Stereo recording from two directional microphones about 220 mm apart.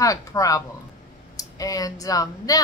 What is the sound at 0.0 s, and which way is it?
Speech, 15° left (ahead or behind).